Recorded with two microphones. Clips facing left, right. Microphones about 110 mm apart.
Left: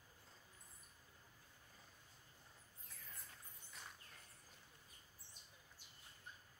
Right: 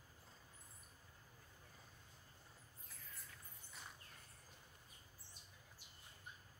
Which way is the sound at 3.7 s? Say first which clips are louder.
Even; 5° right (ahead or behind).